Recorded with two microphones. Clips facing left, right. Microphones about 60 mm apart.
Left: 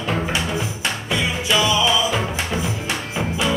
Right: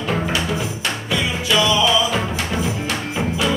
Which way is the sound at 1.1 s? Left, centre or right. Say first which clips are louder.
Right 1 dB; centre.